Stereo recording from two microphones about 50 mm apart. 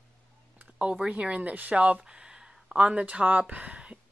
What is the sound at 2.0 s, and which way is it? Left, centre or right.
Speech, centre.